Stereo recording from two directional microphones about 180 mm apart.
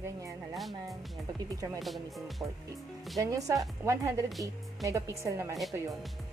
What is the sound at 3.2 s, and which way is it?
Speech, 20° right (ahead or behind).